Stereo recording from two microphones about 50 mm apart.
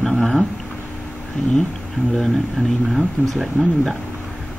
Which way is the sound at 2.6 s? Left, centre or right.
Left.